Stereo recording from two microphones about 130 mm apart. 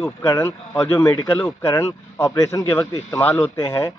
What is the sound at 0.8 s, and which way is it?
Speech, 30° left (ahead or behind).